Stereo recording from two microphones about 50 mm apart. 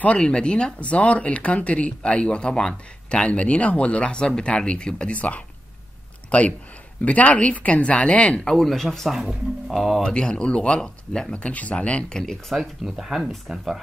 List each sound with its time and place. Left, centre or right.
0.0 s speech: left
8.5 s speech: centre
10.0 s speech: centre
12.4 s speech: centre